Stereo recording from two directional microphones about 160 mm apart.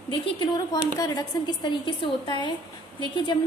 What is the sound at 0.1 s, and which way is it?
A woman's voice, 30° left (ahead or behind).